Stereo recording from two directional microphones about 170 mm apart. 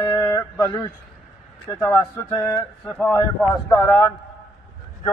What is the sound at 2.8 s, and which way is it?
Speech, 10° left (ahead or behind).